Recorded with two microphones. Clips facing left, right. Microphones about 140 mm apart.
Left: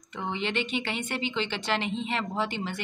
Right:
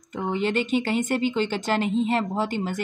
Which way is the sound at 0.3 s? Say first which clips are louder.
Right 7 dB; 40° right (ahead or behind).